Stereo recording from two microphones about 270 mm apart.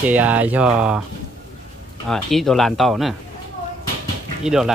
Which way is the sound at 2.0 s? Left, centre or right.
Centre.